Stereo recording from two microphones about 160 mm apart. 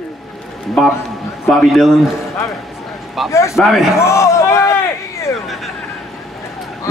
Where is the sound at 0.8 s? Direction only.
5° left (ahead or behind).